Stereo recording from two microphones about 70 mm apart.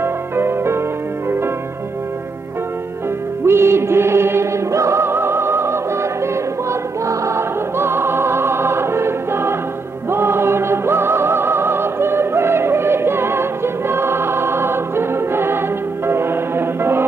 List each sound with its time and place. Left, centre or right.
0.0 s music: right
3.4 s music: right